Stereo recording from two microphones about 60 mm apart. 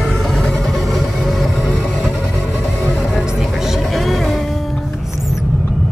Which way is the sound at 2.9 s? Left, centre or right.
Centre.